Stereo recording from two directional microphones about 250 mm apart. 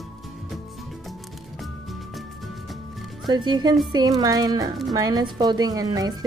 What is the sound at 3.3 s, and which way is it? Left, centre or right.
Speech, centre.